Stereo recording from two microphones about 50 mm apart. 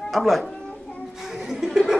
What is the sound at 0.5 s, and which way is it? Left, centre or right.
Babbling, centre.